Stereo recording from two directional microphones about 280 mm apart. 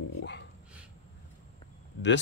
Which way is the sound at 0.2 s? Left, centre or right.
Left.